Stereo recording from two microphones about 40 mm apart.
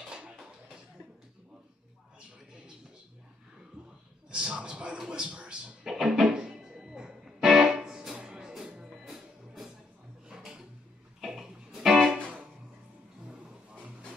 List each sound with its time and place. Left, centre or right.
4.3 s a man's voice: right
5.9 s music: centre
6.3 s music: right
10.2 s a sound: centre
11.1 s music: centre